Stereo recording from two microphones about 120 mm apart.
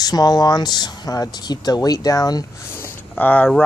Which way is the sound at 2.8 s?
15° left (ahead or behind).